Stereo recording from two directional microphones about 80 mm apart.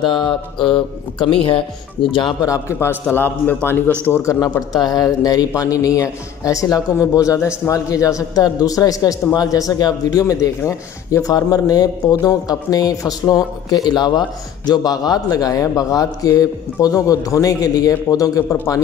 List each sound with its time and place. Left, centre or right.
0.0 s speech: left
2.0 s speech: centre
3.2 s a man's voice: left
4.2 s a man's voice: left
4.7 s a man's voice: left